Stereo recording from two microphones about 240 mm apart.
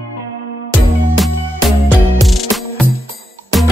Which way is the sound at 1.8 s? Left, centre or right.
Centre.